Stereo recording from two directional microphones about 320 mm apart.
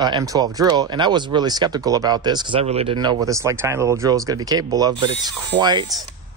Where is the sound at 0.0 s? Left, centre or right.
Centre.